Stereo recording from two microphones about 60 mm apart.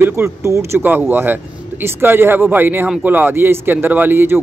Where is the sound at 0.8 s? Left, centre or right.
Right.